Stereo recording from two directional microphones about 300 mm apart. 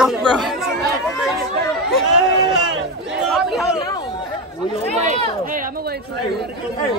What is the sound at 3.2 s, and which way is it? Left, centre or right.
Chatter, centre.